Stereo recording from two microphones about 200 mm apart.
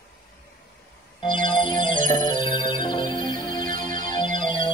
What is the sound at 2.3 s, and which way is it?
Music, 25° left (ahead or behind).